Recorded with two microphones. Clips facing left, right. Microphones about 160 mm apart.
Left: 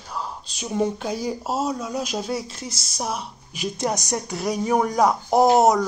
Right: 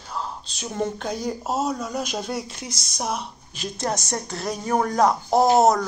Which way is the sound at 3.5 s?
15° left (ahead or behind).